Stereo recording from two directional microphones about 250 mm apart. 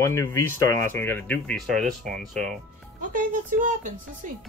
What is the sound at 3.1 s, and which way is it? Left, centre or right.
Speech, right.